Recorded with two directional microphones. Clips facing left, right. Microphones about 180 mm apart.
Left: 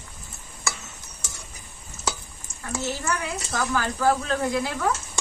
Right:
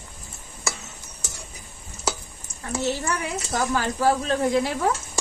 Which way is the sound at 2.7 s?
20° right (ahead or behind).